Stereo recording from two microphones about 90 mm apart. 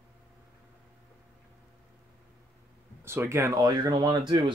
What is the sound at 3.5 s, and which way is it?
Speech, 50° right (ahead or behind).